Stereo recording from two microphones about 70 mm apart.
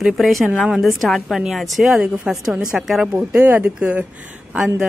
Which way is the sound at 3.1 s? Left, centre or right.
Right.